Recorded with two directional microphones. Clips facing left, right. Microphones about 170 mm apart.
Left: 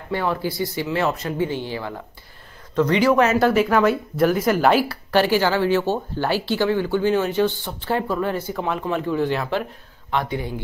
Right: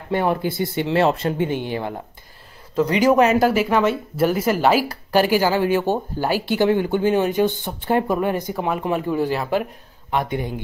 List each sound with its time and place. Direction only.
0.1 s speech: 20° right (ahead or behind)
1.5 s speech: 20° right (ahead or behind); by 4.8 s centre (ahead or behind)
4.8 s speech: 15° right (ahead or behind)